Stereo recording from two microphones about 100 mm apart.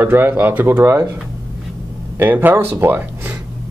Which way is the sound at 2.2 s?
20° right (ahead or behind).